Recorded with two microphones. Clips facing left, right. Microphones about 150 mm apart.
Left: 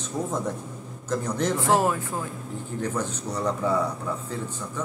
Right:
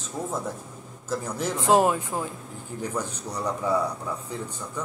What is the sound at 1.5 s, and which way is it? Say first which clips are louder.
Speech: right 4 dB; 20° right (ahead or behind).